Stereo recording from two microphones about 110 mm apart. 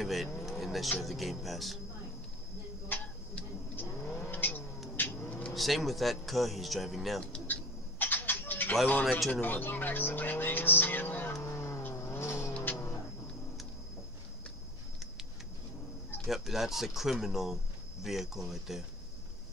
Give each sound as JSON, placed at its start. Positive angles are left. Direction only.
{"t": 0.0, "sound": "speech", "side_deg": 0}
{"t": 2.9, "sound": "vehicle", "side_deg": 15}
{"t": 4.9, "sound": "cat", "side_deg": 20}
{"t": 5.5, "sound": "speech", "side_deg": 0}
{"t": 8.0, "sound": "bird", "side_deg": 15}
{"t": 9.3, "sound": "speech", "side_deg": 15}
{"t": 11.3, "sound": "vehicle", "side_deg": 25}
{"t": 16.3, "sound": "speech", "side_deg": 0}